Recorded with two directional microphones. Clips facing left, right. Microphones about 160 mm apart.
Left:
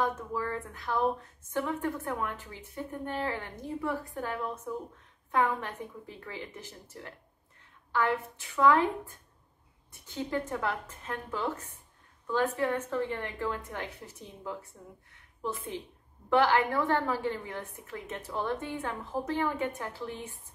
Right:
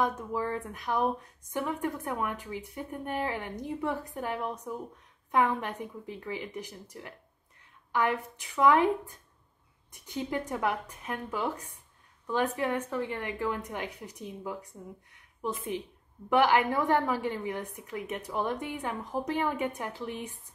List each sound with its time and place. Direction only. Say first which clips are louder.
0.0 s a woman's voice: right 2 dB; 15° right (ahead or behind)